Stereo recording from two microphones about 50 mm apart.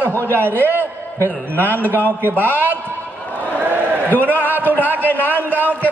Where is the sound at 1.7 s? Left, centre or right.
Right.